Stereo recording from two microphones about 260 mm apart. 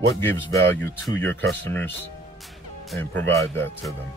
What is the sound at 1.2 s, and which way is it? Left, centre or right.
Speech, right.